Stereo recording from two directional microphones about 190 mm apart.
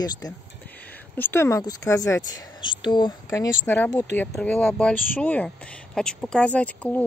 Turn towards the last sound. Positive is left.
turn(degrees=5)  # may be behind; listen again after turning